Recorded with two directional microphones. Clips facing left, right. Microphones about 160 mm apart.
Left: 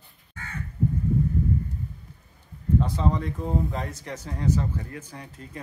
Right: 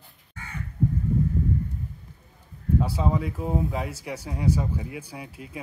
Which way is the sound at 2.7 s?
10° right (ahead or behind).